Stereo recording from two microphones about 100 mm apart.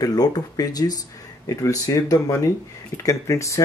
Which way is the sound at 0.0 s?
40° left (ahead or behind).